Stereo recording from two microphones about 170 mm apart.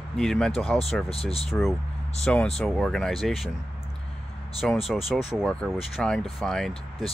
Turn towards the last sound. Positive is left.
turn(degrees=0)  # may be behind; listen again after turning